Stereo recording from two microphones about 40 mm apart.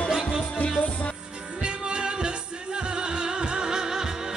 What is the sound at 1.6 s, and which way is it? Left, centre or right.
Music, right.